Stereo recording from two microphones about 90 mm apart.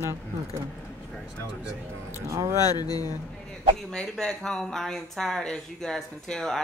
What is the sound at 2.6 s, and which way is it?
Speech, 45° left (ahead or behind).